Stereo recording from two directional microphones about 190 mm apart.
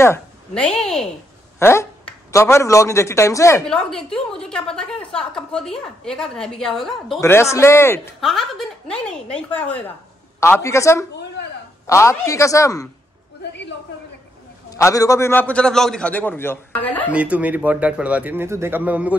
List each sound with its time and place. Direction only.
0.0 s a woman's voice: 10° left (ahead or behind)
1.6 s speech: 15° left (ahead or behind)
3.6 s a woman's voice: 5° left (ahead or behind)
7.2 s a man's voice: 15° left (ahead or behind)
8.2 s a woman's voice: centre (ahead or behind); by 12.9 s 15° left (ahead or behind)
14.7 s a man's voice: 15° left (ahead or behind)
17.1 s speech: 5° right (ahead or behind)